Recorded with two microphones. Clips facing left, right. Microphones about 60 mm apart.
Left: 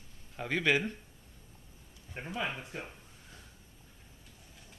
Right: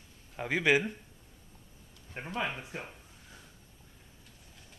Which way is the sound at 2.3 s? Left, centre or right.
Centre.